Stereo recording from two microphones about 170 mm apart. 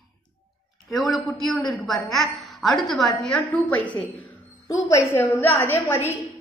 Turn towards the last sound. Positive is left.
turn(degrees=15)  # may be behind; listen again after turning